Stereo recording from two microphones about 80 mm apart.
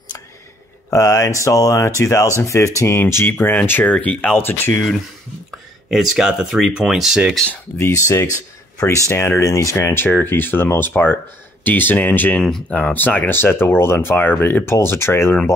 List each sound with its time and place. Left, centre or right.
0.8 s speech: left
5.9 s speech: centre
7.7 s speech: left
12.4 s speech: centre
12.7 s speech: left